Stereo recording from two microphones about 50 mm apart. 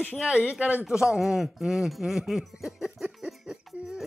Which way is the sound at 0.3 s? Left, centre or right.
Right.